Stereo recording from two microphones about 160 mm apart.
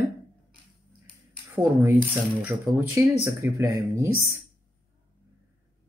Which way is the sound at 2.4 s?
15° right (ahead or behind).